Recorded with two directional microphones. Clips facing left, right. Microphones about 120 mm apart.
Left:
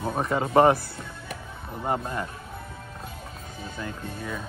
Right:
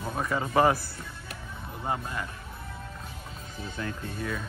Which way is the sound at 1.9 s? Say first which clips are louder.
Left 4 dB; 30° left (ahead or behind).